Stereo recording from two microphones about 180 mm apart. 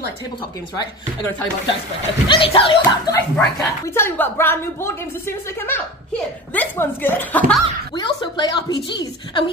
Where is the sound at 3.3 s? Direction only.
15° left (ahead or behind).